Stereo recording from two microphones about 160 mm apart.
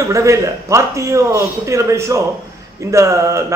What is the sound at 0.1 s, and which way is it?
A man's voice, 20° right (ahead or behind).